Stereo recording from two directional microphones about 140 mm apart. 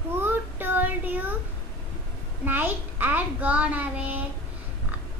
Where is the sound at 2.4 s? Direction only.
15° right (ahead or behind).